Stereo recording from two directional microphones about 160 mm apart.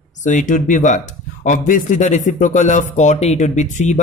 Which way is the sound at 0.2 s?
50° left (ahead or behind).